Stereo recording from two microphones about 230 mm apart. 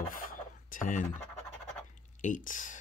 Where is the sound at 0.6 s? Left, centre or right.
Left.